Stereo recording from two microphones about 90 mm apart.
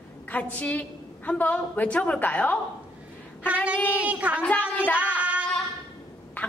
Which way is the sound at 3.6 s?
20° left (ahead or behind).